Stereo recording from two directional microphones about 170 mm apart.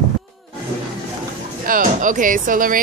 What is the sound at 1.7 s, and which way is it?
Speech, 50° right (ahead or behind).